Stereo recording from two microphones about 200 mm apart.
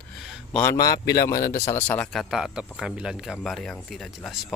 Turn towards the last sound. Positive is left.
turn(degrees=0)  # may be behind; listen again after turning